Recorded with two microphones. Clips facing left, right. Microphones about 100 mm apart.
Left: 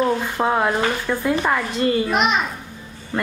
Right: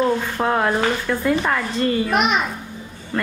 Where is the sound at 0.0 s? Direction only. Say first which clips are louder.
Even; 5° left (ahead or behind).